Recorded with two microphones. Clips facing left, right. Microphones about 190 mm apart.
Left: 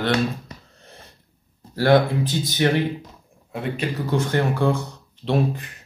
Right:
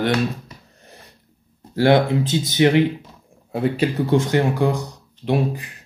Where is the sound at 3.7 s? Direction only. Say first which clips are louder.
Right 5 dB; 30° right (ahead or behind).